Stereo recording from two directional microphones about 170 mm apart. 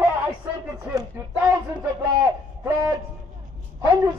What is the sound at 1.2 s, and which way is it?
Speech, 15° right (ahead or behind).